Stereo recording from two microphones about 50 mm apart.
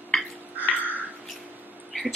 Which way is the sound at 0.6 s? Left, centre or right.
Right.